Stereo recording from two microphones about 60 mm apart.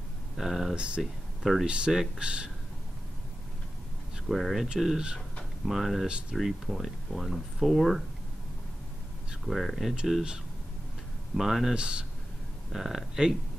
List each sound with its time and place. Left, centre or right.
0.4 s speech: centre
0.7 s speech: centre
1.4 s speech: centre
1.9 s speech: centre
4.3 s speech: centre
9.5 s speech: centre
11.3 s speech: centre